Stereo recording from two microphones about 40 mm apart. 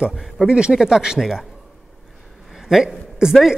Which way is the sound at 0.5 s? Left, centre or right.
Right.